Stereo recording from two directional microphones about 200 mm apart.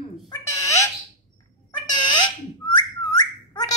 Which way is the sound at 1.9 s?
20° left (ahead or behind).